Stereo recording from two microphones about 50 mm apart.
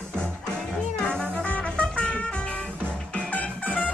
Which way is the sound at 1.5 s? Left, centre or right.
Left.